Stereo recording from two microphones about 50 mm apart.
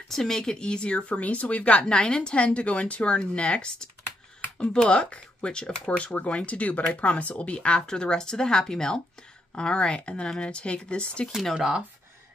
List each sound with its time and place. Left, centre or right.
0.1 s speech: centre
11.5 s speech: centre